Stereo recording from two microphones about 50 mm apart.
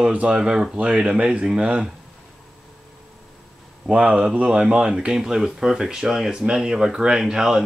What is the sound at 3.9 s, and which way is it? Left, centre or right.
Speech, centre.